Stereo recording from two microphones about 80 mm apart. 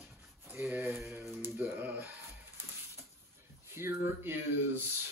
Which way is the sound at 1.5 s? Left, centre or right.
Right.